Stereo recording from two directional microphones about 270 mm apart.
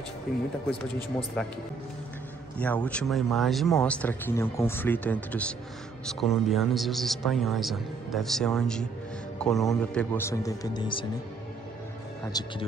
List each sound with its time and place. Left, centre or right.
0.3 s speech: left
2.6 s speech: centre
12.3 s speech: centre